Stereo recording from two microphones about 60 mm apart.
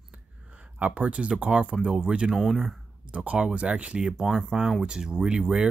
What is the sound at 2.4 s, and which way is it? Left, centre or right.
Speech, centre.